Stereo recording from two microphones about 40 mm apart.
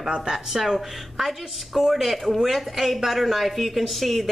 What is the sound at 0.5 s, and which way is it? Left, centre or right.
A woman's voice, centre.